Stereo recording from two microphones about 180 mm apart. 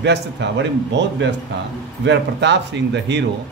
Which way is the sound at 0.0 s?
75° right (ahead or behind).